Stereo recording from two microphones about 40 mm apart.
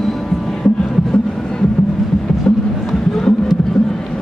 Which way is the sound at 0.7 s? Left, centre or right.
Centre.